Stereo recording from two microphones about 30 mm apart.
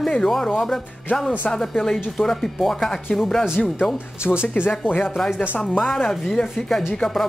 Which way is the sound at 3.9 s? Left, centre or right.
Right.